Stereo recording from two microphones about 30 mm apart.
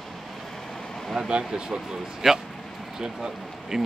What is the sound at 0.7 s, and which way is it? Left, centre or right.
Vehicle, centre.